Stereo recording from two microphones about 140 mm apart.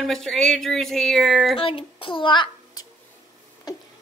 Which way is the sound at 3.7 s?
30° left (ahead or behind).